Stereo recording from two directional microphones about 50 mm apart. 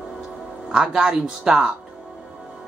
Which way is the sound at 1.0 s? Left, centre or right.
Centre.